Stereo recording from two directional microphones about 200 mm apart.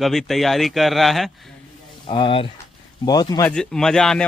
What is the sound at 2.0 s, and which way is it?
Speech, 25° left (ahead or behind).